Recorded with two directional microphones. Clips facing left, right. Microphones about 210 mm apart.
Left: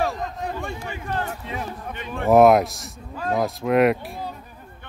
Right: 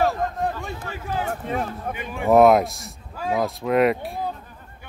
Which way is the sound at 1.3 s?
50° right (ahead or behind).